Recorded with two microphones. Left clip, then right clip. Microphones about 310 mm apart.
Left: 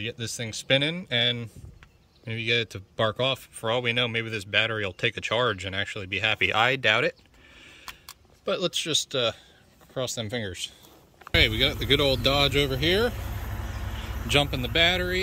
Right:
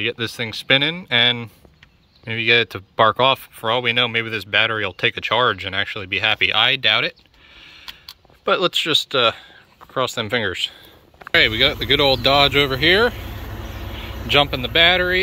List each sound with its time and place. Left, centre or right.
0.0 s speech: centre
13.3 s a sound: right
14.3 s speech: centre